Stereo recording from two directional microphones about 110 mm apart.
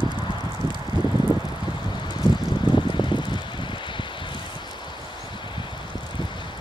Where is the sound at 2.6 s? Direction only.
45° left (ahead or behind).